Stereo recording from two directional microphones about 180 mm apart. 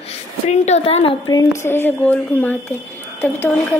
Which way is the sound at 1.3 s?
15° left (ahead or behind).